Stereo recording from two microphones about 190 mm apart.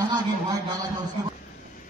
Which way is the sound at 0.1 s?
20° right (ahead or behind).